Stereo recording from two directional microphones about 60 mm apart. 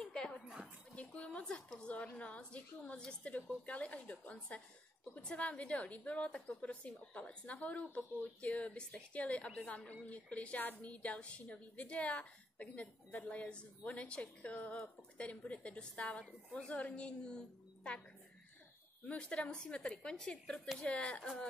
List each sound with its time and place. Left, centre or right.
0.0 s a sound: centre
2.1 s a woman's voice: left
19.0 s a woman's voice: centre